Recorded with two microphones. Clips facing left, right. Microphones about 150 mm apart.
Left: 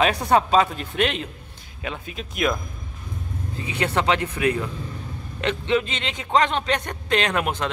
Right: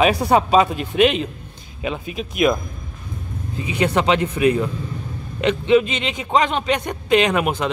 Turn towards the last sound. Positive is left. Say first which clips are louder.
# right 5 dB
turn(degrees=-10)  # may be behind; listen again after turning